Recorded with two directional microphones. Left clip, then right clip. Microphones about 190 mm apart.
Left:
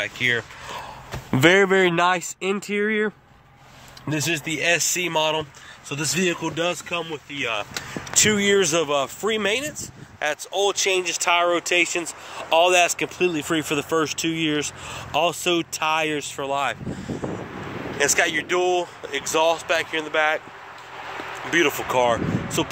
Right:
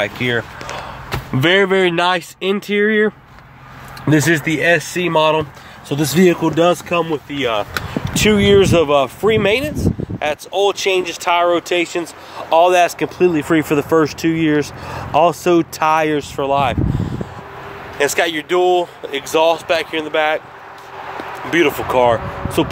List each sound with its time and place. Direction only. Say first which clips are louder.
1.3 s speech: right 2 dB; 45° left (ahead or behind)
1.6 s speech: right 4 dB; 30° left (ahead or behind)
4.0 s speech: right 10 dB; 15° right (ahead or behind)
4.5 s speech: right 7 dB; 5° left (ahead or behind)
5.9 s speech: right 9 dB; 15° right (ahead or behind)
7.3 s speech: right 7 dB; 15° right (ahead or behind)
8.0 s speech: right 5 dB; 5° left (ahead or behind)
17.9 s speech: right 4 dB; centre (ahead or behind)
21.5 s speech: right 5 dB; 5° left (ahead or behind)